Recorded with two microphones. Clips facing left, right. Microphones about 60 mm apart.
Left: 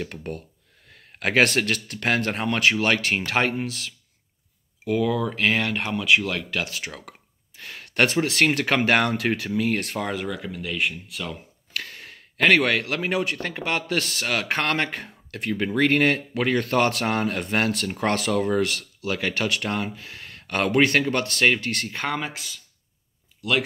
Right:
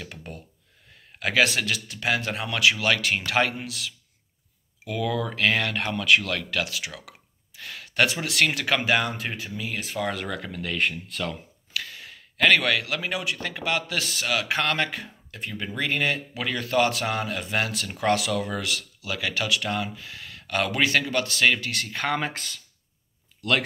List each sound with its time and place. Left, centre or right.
0.1 s speech: left
4.8 s speech: left
6.6 s speech: left
9.9 s speech: left
10.3 s speech: centre
11.7 s speech: left
15.3 s speech: left
22.1 s speech: centre